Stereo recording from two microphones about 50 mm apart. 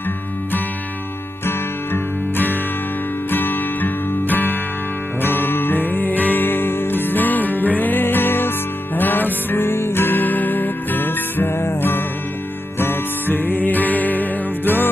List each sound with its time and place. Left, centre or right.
3.3 s music: left